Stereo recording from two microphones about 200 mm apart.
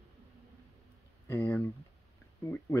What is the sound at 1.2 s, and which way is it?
Speech, 10° left (ahead or behind).